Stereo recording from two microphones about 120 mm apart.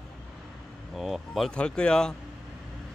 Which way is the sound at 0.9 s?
Centre (ahead or behind).